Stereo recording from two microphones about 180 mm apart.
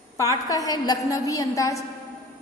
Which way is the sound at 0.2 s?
20° left (ahead or behind).